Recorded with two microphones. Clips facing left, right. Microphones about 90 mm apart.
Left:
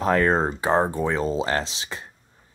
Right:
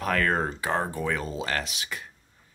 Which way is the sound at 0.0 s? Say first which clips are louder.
Left 5 dB; 25° left (ahead or behind).